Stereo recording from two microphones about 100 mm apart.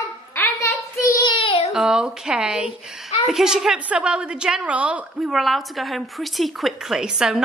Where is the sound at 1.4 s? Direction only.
60° left (ahead or behind).